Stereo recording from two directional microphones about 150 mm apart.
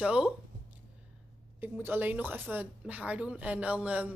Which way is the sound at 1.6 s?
15° right (ahead or behind).